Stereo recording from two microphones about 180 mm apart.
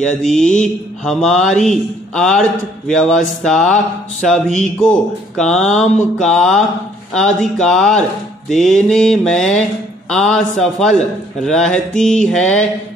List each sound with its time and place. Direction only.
0.0 s mantra: 5° left (ahead or behind)
5.7 s a sound: 40° left (ahead or behind)
6.1 s mantra: 5° left (ahead or behind)